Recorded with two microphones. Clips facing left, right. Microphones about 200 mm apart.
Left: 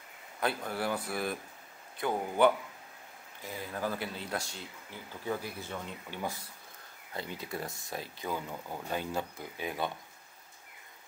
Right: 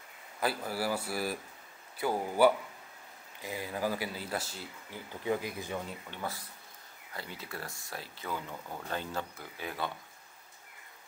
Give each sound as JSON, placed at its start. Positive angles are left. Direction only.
{"t": 0.4, "sound": "speech", "side_deg": -5}
{"t": 5.2, "sound": "speech", "side_deg": -15}
{"t": 6.1, "sound": "speech", "side_deg": 10}